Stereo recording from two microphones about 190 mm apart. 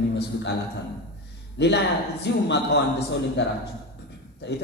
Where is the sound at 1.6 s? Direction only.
65° left (ahead or behind).